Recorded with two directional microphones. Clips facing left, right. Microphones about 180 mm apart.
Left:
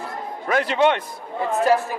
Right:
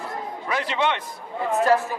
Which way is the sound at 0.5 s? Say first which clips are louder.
Left 6 dB; 50° left (ahead or behind).